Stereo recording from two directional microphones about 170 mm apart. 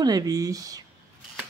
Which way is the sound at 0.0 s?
20° right (ahead or behind).